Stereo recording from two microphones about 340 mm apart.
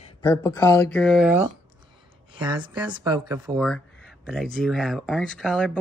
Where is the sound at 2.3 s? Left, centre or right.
Centre.